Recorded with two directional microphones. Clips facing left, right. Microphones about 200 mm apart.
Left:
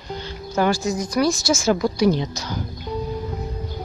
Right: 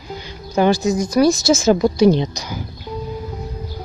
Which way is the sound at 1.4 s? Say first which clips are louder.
Right 5 dB; 20° right (ahead or behind).